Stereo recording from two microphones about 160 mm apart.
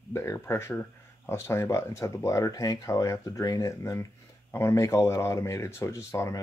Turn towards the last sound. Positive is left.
turn(degrees=20)  # may be behind; listen again after turning